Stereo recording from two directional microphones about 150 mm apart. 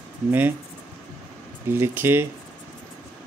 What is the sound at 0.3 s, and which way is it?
Speech, 15° right (ahead or behind).